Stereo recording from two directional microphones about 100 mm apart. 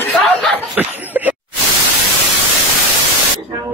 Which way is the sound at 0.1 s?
Centre (ahead or behind).